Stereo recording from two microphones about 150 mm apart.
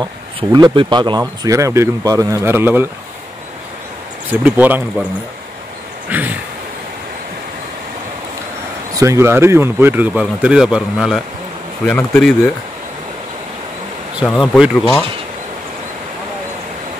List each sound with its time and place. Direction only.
0.0 s speech: 25° right (ahead or behind)
4.3 s speech: 10° right (ahead or behind)
6.0 s a sound: 10° right (ahead or behind)
8.9 s speech: 20° right (ahead or behind); by 12.4 s 5° left (ahead or behind)
14.2 s speech: centre (ahead or behind)